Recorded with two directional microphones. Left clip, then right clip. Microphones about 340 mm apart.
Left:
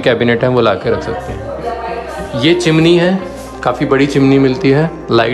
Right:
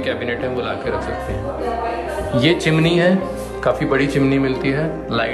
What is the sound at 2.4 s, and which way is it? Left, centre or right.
Speech, centre.